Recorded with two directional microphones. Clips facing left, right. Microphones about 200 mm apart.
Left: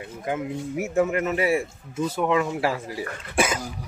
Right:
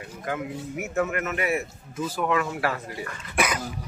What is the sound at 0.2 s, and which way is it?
Speech, 25° left (ahead or behind).